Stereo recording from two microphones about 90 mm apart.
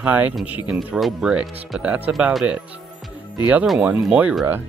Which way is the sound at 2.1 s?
15° right (ahead or behind).